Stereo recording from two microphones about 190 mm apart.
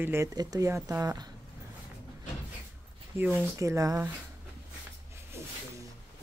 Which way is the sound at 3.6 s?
15° right (ahead or behind).